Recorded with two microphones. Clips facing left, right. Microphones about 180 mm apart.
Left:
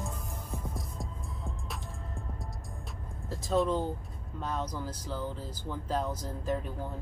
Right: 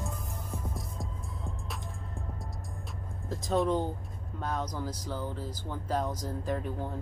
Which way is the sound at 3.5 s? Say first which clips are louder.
Even; 15° right (ahead or behind).